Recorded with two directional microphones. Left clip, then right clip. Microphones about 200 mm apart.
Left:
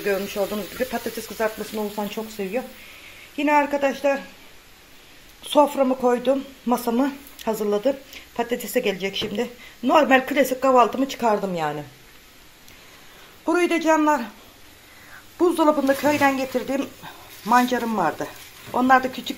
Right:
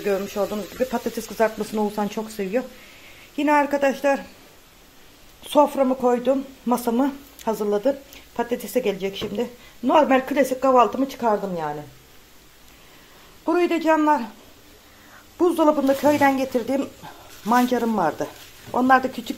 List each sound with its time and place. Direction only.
0.0 s a man's voice: 10° right (ahead or behind)
1.7 s speech: 20° right (ahead or behind)
5.7 s speech: 5° right (ahead or behind)
13.5 s a man's voice: 5° right (ahead or behind)
15.3 s a man's voice: 10° right (ahead or behind)